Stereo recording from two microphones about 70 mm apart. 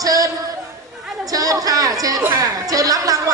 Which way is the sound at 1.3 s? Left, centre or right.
Right.